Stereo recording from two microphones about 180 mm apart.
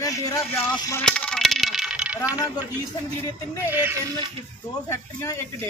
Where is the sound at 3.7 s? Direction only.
10° right (ahead or behind).